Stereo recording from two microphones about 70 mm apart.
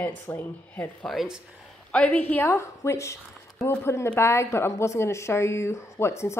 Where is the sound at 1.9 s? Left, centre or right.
Centre.